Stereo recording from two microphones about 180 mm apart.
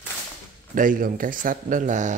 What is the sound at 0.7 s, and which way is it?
A man's voice, 50° right (ahead or behind).